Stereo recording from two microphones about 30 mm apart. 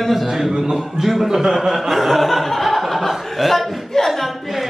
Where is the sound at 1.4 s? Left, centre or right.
Right.